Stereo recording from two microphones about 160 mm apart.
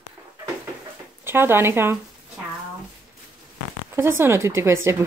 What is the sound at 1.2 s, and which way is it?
Speech, 15° right (ahead or behind).